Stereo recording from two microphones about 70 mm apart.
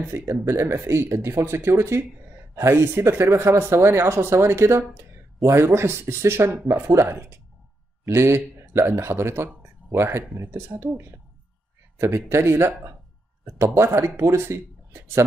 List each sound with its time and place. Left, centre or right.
0.1 s a man's voice: right
12.3 s speech: right